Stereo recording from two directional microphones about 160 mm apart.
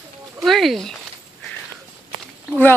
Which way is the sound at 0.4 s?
Centre (ahead or behind).